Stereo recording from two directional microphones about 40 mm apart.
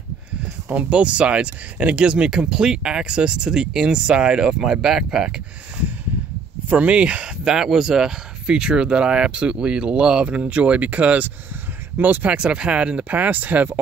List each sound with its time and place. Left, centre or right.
0.4 s speech: right; by 5.3 s centre
6.7 s speech: right
7.4 s speech: centre; by 12.3 s right
12.3 s speech: right
13.1 s speech: right